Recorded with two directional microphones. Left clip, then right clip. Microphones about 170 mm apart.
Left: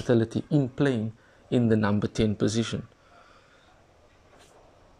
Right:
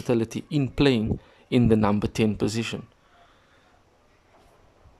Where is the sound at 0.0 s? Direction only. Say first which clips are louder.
Left 1 dB; 15° right (ahead or behind).